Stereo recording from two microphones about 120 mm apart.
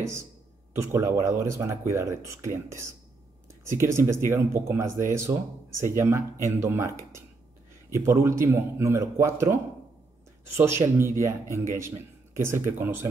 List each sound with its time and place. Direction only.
0.7 s speech: 25° right (ahead or behind)